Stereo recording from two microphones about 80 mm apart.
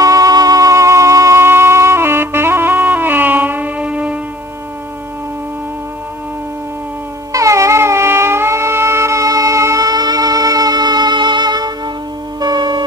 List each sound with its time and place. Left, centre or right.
0.0 s music: right; by 4.2 s centre
7.3 s music: right